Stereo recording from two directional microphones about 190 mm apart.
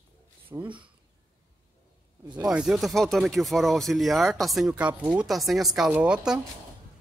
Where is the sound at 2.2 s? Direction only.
25° right (ahead or behind).